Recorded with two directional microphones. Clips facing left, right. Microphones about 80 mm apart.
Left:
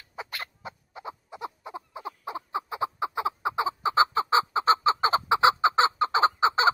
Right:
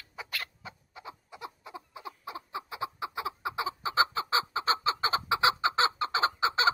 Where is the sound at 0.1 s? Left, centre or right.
Left.